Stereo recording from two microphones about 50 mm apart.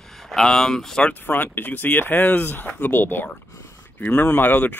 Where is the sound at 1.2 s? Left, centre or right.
Left.